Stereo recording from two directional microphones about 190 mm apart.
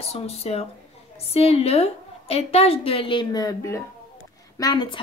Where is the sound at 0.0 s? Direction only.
35° left (ahead or behind).